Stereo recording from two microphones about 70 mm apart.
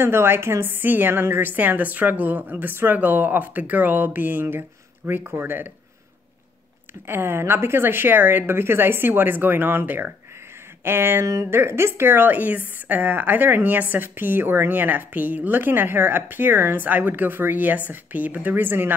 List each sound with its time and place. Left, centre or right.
0.0 s a woman's voice: right
7.1 s a woman's voice: right